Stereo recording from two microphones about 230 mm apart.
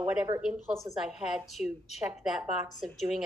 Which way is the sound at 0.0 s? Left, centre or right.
Centre.